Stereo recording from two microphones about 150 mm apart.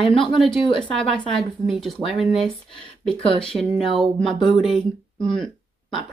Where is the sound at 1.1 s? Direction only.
Centre (ahead or behind).